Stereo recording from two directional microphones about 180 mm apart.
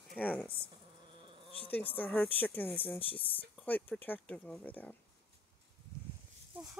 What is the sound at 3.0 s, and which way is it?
Speech, 30° left (ahead or behind).